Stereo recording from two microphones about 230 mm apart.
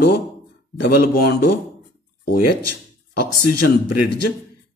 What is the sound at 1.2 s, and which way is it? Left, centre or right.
Speech, left.